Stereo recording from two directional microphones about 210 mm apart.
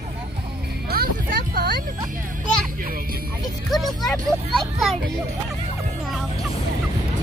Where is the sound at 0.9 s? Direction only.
45° right (ahead or behind).